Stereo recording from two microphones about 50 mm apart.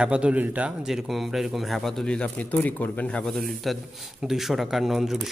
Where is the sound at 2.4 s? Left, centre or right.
Left.